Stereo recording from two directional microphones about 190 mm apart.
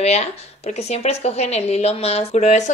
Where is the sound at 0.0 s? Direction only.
35° left (ahead or behind).